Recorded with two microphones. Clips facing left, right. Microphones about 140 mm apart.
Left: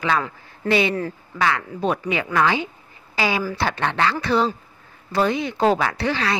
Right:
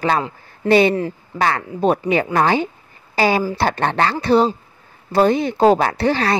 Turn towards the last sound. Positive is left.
turn(degrees=-40)  # may be behind; listen again after turning